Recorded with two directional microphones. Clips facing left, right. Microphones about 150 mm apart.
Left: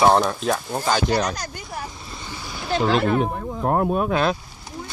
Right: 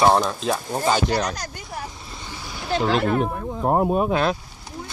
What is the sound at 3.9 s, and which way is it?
Speech, 40° right (ahead or behind).